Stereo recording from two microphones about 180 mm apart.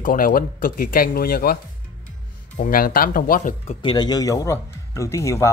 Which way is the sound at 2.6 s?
55° left (ahead or behind).